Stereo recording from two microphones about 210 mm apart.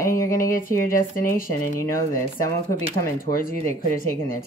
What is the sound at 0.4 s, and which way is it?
Speech, 40° left (ahead or behind).